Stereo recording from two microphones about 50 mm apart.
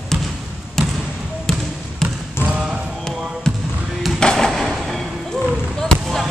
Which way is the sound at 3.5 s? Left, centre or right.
Centre.